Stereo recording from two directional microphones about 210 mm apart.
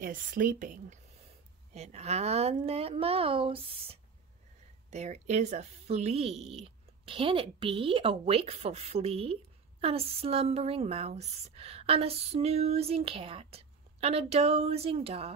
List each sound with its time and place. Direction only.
0.0 s a woman's voice: 40° right (ahead or behind)